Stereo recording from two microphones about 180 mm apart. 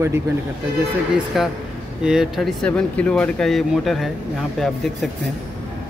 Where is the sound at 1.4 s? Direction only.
Centre (ahead or behind).